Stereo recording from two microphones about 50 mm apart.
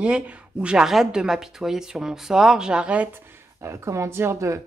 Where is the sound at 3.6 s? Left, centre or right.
Right.